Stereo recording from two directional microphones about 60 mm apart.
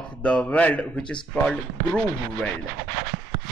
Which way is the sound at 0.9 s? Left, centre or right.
Centre.